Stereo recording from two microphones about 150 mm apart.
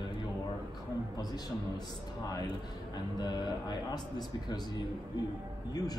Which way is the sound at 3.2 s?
30° left (ahead or behind).